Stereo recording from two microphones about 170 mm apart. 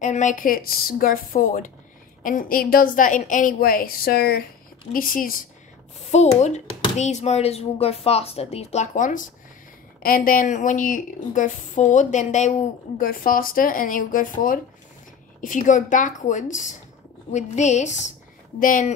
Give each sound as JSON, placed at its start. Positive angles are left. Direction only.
{"t": 0.0, "sound": "a woman's voice", "side_deg": 45}
{"t": 4.9, "sound": "a woman's voice", "side_deg": 55}
{"t": 6.1, "sound": "a woman's voice", "side_deg": 40}